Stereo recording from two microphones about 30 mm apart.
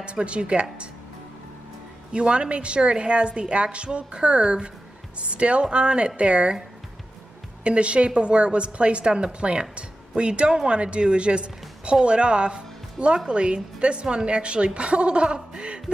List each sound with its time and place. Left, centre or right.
0.0 s a woman's voice: right
2.1 s a woman's voice: right
7.6 s a woman's voice: right